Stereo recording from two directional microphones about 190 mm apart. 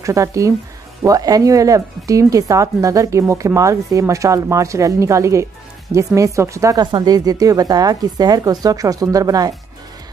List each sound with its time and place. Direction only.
0.0 s a woman's voice: 15° right (ahead or behind)